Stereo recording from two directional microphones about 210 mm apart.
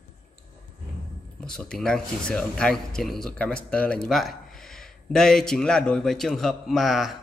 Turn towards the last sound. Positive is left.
turn(degrees=0)  # may be behind; listen again after turning